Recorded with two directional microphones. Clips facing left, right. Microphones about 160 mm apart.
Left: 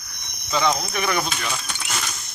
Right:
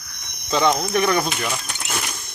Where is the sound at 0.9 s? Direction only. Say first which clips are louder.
Right 5 dB; 40° right (ahead or behind).